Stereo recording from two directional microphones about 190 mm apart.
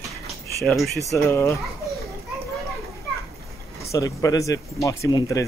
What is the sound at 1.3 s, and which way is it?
Speech, 15° left (ahead or behind).